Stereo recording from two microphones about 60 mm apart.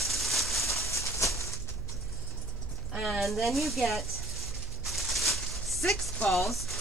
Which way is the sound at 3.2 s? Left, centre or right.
Centre.